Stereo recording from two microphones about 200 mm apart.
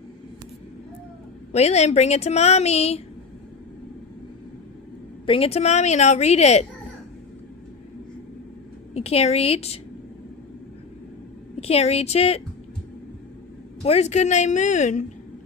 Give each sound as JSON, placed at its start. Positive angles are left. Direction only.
{"t": 1.5, "sound": "speech", "side_deg": 35}
{"t": 5.2, "sound": "speech", "side_deg": 25}
{"t": 8.9, "sound": "speech", "side_deg": 30}
{"t": 11.6, "sound": "speech", "side_deg": 30}
{"t": 13.8, "sound": "speech", "side_deg": 35}